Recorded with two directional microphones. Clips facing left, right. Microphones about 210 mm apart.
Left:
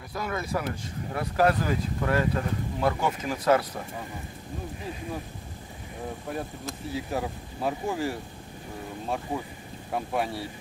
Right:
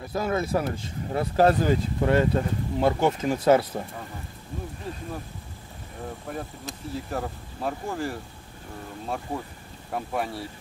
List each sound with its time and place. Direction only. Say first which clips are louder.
0.1 s speech: right 5 dB; 25° right (ahead or behind)
6.9 s speech: even; 5° left (ahead or behind)